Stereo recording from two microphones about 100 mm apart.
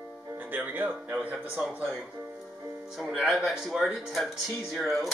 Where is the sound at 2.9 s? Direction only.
5° right (ahead or behind).